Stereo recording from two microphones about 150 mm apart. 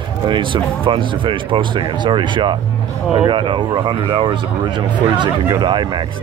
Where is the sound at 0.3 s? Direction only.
35° right (ahead or behind).